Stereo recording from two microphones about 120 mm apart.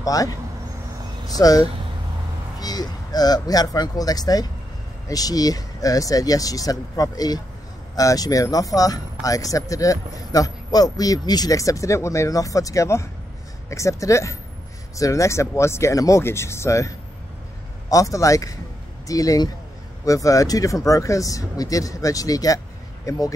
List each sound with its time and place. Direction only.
0.0 s speech: 30° left (ahead or behind)